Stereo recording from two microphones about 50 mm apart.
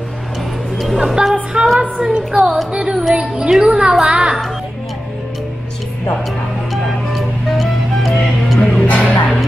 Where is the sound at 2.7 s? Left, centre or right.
Centre.